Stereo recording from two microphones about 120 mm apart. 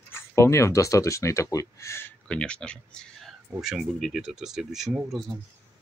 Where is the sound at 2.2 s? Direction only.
10° left (ahead or behind).